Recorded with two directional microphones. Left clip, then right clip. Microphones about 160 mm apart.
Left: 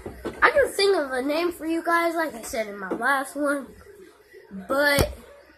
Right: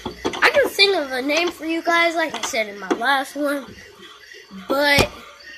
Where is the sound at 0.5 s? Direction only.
30° right (ahead or behind).